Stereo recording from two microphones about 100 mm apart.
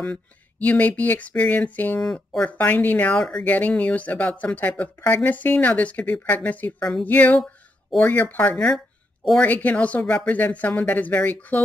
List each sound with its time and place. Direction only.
0.0 s speech: 15° left (ahead or behind)